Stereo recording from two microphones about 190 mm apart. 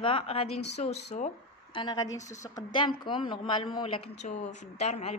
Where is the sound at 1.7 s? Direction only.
20° left (ahead or behind).